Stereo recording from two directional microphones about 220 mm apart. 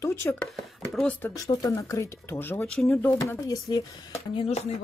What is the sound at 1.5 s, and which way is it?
Speech, 15° left (ahead or behind).